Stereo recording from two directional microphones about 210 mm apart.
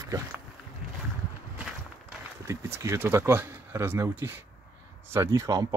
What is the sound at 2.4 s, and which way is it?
Speech, 15° right (ahead or behind).